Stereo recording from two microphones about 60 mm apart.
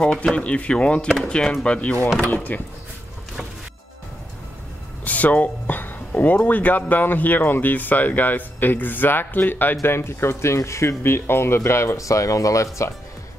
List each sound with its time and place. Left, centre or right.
0.0 s speech: centre
5.0 s speech: left
9.8 s speech: left
12.0 s speech: left